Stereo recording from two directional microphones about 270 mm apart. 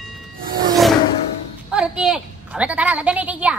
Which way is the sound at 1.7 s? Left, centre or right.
Centre.